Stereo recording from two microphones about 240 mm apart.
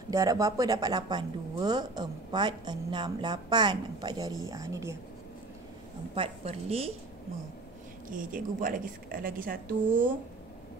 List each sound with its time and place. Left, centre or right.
0.1 s speech: centre
6.1 s a woman's voice: right
8.1 s a woman's voice: right